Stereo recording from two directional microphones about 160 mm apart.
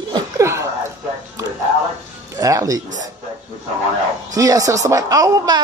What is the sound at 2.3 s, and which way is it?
Speech, 20° right (ahead or behind).